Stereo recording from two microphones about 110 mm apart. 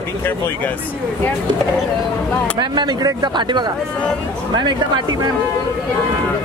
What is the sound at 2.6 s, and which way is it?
Speech, 40° right (ahead or behind).